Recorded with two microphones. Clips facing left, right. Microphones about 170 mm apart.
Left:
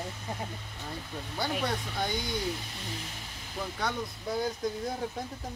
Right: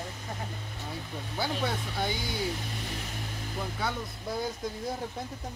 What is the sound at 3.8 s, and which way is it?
Speech, centre (ahead or behind).